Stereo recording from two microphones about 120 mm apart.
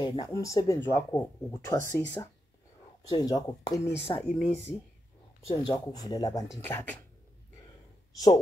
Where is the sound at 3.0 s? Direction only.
30° left (ahead or behind).